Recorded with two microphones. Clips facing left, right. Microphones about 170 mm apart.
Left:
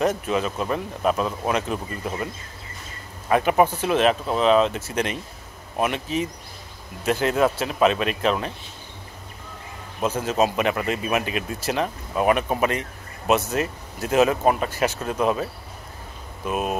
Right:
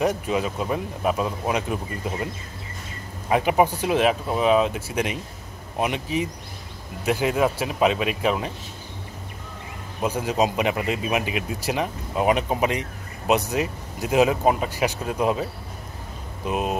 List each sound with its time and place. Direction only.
0.0 s speech: 15° right (ahead or behind)
3.3 s speech: 15° right (ahead or behind)
10.0 s speech: 15° right (ahead or behind)
16.4 s speech: 20° right (ahead or behind)